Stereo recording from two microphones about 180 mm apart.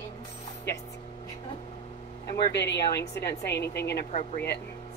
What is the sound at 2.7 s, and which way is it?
Speech, 20° left (ahead or behind).